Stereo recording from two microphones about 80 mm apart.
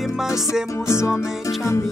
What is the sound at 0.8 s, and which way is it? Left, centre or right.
Music, left.